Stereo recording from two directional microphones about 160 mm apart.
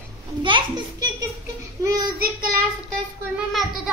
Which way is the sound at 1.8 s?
20° right (ahead or behind).